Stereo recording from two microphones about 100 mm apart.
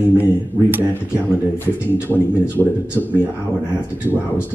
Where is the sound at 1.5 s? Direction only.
20° left (ahead or behind).